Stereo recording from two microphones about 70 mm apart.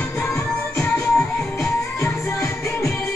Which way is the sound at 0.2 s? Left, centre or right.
Left.